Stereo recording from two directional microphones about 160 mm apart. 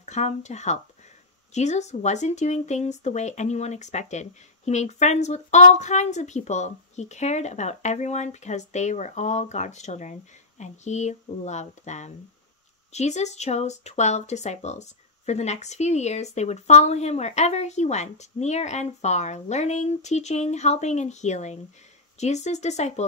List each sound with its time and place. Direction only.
0.0 s speech: 45° left (ahead or behind)